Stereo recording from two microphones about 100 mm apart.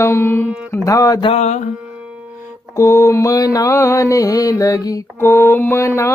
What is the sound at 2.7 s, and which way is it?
Mantra, 30° left (ahead or behind).